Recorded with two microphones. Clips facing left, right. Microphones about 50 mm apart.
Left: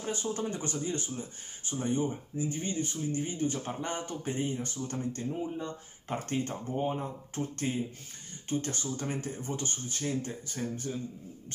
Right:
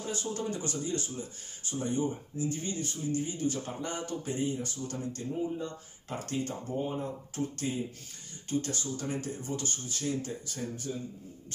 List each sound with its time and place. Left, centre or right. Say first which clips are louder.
0.0 s speech: left 1 dB; left